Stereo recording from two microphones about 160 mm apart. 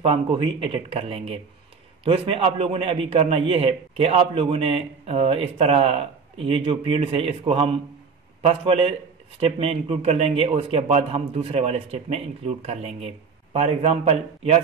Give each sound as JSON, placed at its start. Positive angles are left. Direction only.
{"t": 0.0, "sound": "a man's voice", "side_deg": -35}